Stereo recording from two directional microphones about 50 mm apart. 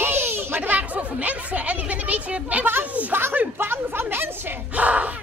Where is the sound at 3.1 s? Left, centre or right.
Right.